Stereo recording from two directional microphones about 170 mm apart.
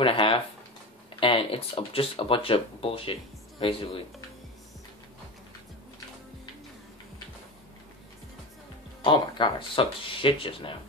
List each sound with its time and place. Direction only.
0.0 s a sound: 30° left (ahead or behind)
1.2 s speech: 30° left (ahead or behind)
9.0 s speech: 30° left (ahead or behind)